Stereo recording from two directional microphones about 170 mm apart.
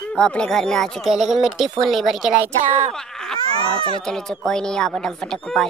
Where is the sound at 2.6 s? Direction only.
35° right (ahead or behind).